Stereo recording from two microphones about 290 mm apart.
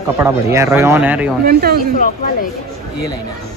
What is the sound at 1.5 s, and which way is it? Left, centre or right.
Speech, right.